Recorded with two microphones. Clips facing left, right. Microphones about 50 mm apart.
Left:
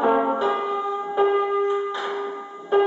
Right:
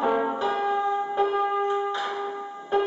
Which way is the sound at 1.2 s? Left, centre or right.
Centre.